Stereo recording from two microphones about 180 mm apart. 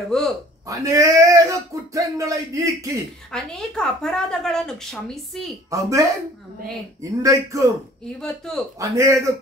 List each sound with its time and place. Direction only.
0.1 s a woman's voice: 5° left (ahead or behind)
0.7 s speech: 15° right (ahead or behind)
3.3 s a woman's voice: 5° left (ahead or behind)
5.7 s speech: 15° right (ahead or behind)
8.2 s a woman's voice: 5° left (ahead or behind)
8.7 s speech: 15° right (ahead or behind)